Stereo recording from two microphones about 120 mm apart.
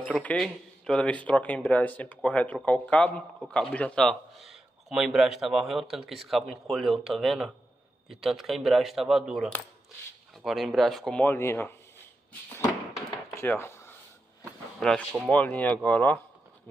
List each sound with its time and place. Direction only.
0.0 s speech: 10° left (ahead or behind)
11.2 s speech: 20° left (ahead or behind)
12.3 s a sound: 20° left (ahead or behind)
14.8 s speech: 5° left (ahead or behind)